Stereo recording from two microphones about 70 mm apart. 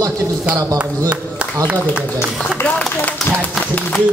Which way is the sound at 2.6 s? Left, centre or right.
Left.